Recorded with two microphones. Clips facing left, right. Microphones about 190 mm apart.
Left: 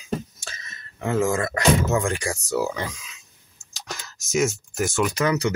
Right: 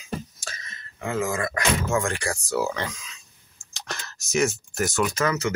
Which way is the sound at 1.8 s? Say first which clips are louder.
Left 2 dB; 15° left (ahead or behind).